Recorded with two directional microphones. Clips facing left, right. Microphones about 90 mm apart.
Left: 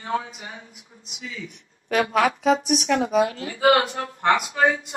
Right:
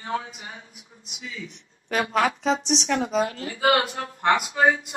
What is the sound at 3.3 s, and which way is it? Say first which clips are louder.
Speech: left 3 dB; 25° left (ahead or behind).